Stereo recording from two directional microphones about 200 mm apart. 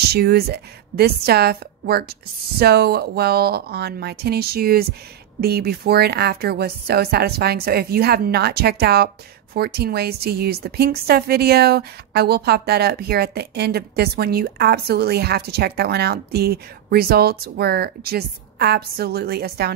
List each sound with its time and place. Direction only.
0.0 s a woman's voice: 50° right (ahead or behind)